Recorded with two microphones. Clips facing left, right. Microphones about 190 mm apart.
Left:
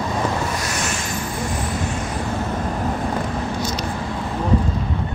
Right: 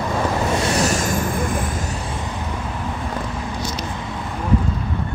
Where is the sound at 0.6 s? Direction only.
30° right (ahead or behind); by 1.6 s 50° right (ahead or behind).